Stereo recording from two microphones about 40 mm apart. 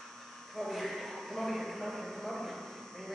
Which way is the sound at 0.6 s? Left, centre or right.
Centre.